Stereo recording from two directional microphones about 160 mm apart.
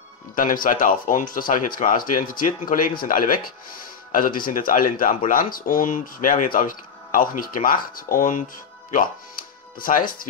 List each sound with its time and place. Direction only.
0.4 s speech: 60° left (ahead or behind)